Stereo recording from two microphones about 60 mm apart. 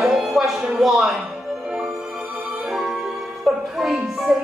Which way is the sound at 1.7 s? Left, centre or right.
Centre.